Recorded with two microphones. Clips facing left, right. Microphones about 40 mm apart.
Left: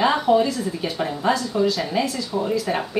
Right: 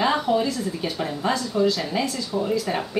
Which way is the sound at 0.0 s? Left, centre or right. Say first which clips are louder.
Left 3 dB; centre.